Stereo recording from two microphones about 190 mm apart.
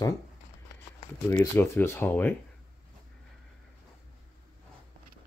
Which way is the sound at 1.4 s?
10° left (ahead or behind).